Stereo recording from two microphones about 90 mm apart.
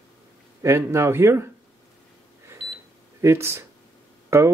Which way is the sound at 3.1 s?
30° right (ahead or behind).